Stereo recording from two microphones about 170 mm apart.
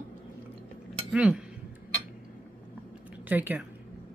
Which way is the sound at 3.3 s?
10° right (ahead or behind).